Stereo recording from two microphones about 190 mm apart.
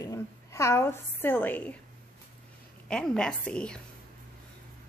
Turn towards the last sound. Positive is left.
turn(degrees=5)  # may be behind; listen again after turning